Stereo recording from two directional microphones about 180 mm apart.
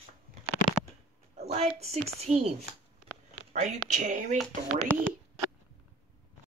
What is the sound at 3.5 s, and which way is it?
Speech, 45° right (ahead or behind).